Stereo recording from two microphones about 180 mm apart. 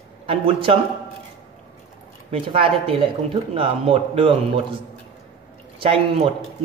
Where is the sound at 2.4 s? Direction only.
30° right (ahead or behind).